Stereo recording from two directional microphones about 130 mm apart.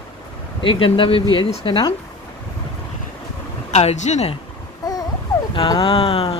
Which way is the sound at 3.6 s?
60° left (ahead or behind).